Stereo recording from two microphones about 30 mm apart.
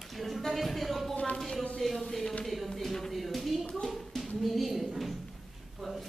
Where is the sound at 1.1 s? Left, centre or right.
Left.